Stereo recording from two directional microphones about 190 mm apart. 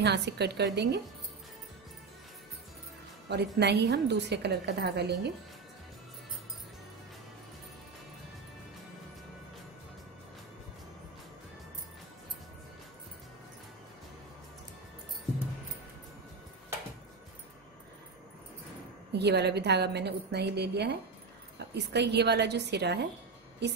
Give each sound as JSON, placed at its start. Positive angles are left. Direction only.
{"t": 0.0, "sound": "a woman's voice", "side_deg": -60}
{"t": 3.3, "sound": "a woman's voice", "side_deg": -60}
{"t": 19.1, "sound": "a woman's voice", "side_deg": -60}